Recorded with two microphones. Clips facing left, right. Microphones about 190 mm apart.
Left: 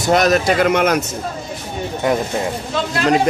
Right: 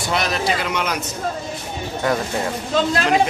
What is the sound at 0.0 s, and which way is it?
Speech, 45° left (ahead or behind).